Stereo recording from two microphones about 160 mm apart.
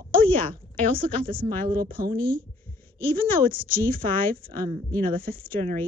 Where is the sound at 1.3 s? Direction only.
65° right (ahead or behind).